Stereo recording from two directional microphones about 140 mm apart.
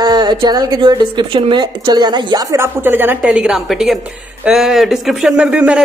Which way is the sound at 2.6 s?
15° right (ahead or behind).